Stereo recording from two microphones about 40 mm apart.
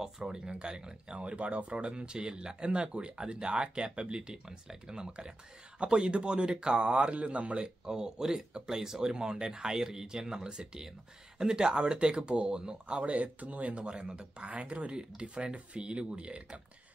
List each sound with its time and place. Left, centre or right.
0.0 s speech: centre
1.1 s speech: right
7.8 s speech: centre
13.0 s speech: right
13.8 s speech: right